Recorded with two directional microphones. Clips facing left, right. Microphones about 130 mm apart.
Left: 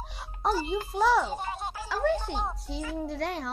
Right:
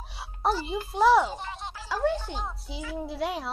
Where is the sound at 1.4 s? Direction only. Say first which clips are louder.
Left 3 dB; 45° left (ahead or behind).